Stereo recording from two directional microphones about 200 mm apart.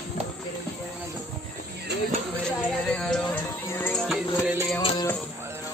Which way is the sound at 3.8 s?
10° left (ahead or behind).